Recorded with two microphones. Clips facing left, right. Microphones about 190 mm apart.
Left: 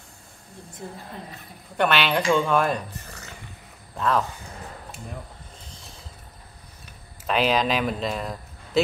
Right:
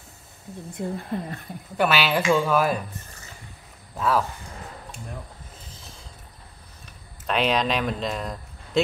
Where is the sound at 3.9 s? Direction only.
5° right (ahead or behind).